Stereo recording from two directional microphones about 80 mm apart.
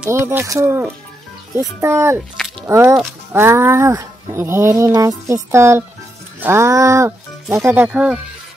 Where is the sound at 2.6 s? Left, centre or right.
Right.